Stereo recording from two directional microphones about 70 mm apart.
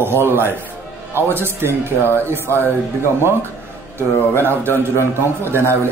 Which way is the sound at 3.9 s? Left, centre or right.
Right.